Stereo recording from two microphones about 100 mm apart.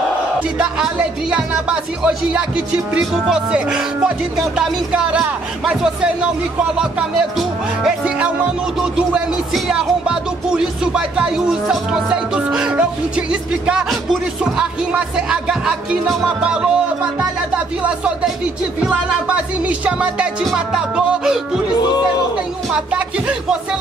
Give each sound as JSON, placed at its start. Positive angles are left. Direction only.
{"t": 0.4, "sound": "music", "side_deg": -10}
{"t": 22.7, "sound": "music", "side_deg": -10}